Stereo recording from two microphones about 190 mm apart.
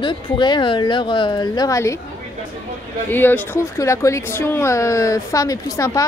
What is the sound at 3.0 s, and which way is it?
Speech, 10° left (ahead or behind).